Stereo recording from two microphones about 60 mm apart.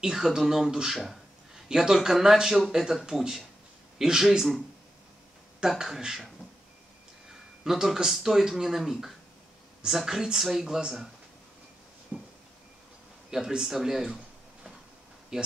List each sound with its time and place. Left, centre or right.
0.0 s speech: centre
5.6 s speech: centre
7.6 s speech: centre
12.1 s a sound: right
13.3 s speech: centre